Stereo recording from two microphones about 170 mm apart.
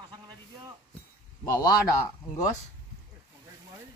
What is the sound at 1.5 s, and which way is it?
Speech, 25° left (ahead or behind).